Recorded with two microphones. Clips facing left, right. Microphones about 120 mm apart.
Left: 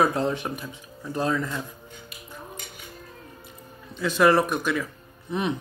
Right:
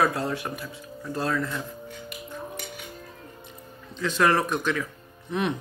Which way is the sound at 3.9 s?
10° left (ahead or behind).